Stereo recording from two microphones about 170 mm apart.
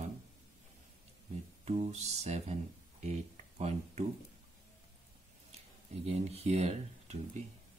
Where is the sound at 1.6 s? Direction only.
40° right (ahead or behind).